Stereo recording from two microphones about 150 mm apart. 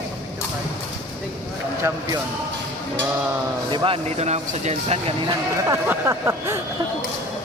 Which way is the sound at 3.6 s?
35° right (ahead or behind).